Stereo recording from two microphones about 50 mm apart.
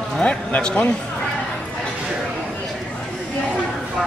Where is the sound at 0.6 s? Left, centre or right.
Centre.